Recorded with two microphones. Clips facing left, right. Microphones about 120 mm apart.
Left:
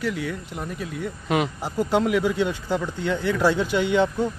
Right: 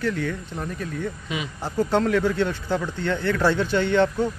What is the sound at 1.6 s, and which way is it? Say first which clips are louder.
Speech: even; 10° left (ahead or behind).